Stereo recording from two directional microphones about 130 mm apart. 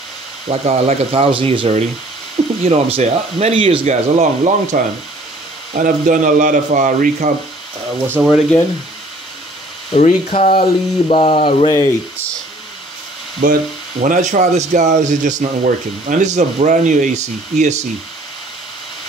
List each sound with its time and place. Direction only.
0.5 s speech: 55° right (ahead or behind)
2.6 s speech: 50° right (ahead or behind)
3.8 s speech: 65° right (ahead or behind)
5.8 s speech: 85° right
8.2 s speech: centre (ahead or behind)
9.9 s speech: 60° left (ahead or behind)
10.5 s a sound: 45° left (ahead or behind)
13.4 s speech: 90° right
14.0 s speech: 80° right; by 17.8 s 60° right (ahead or behind)